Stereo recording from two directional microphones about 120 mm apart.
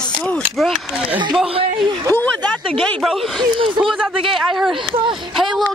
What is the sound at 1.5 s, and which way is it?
Speech, 50° right (ahead or behind).